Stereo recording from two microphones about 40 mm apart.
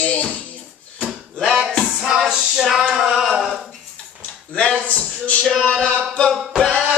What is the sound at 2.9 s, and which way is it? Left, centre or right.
Singing, centre.